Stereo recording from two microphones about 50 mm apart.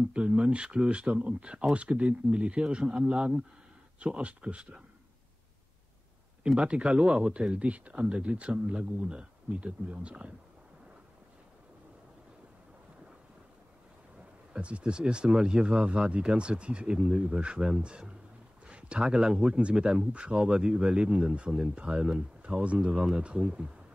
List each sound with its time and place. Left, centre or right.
0.1 s speech: right
6.4 s speech: right
14.5 s speech: right